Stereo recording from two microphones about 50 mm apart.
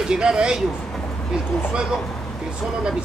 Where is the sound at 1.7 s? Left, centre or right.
Centre.